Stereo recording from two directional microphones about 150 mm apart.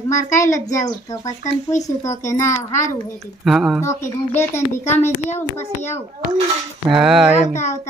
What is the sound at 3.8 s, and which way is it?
A child's voice, 15° left (ahead or behind).